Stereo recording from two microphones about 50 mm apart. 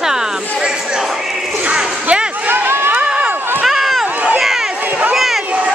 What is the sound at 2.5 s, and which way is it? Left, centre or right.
Run, right.